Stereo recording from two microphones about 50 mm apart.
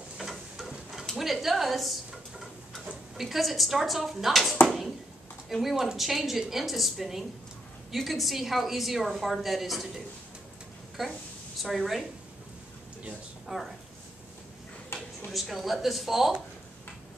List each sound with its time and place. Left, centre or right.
0.2 s a sound: centre
1.2 s dishes: centre
3.2 s a woman's voice: centre
11.5 s speech: centre
13.5 s a woman's voice: centre
15.2 s a woman's voice: centre